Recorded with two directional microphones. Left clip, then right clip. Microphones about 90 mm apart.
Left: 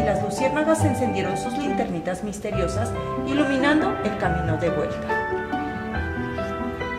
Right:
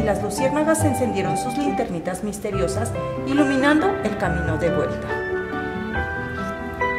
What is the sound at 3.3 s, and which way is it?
Speech, 35° right (ahead or behind).